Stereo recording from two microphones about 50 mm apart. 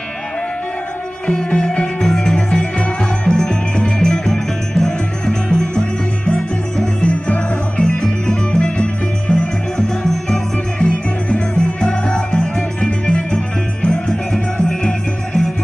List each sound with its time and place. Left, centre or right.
1.2 s music: centre
4.3 s music: centre
7.0 s music: left